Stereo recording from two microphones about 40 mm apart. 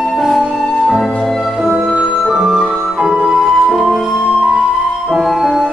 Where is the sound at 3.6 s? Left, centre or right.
Centre.